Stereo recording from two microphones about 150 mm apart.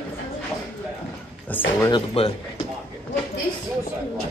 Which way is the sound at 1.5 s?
10° left (ahead or behind).